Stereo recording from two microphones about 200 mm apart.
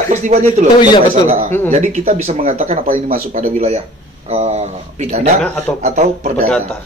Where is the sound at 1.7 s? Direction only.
35° right (ahead or behind).